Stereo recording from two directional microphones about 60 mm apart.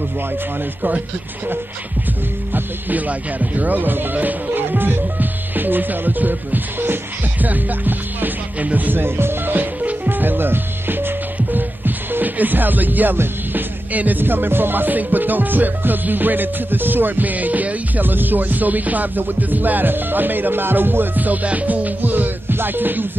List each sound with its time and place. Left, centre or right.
2.5 s speech: right
7.4 s music: right